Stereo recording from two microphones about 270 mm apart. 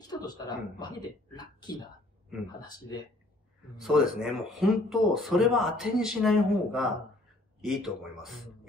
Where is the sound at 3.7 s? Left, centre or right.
Centre.